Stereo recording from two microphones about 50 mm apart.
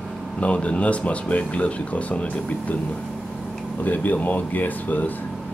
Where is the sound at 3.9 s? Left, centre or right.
Left.